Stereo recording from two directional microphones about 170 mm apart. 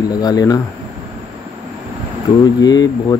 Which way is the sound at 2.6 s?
25° left (ahead or behind).